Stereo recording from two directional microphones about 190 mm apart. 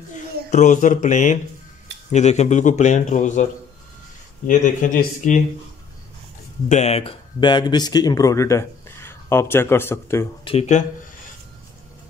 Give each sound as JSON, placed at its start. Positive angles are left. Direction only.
{"t": 0.1, "sound": "speech", "side_deg": 40}
{"t": 4.5, "sound": "speech", "side_deg": 40}
{"t": 6.7, "sound": "speech", "side_deg": 35}
{"t": 10.4, "sound": "speech", "side_deg": 35}